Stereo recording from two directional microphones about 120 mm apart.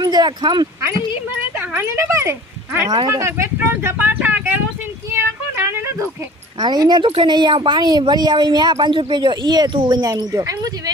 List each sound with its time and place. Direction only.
0.0 s speech: 35° right (ahead or behind)
1.6 s a child's voice: 20° right (ahead or behind)
5.1 s a sound: 20° right (ahead or behind)
6.6 s speech: 35° right (ahead or behind)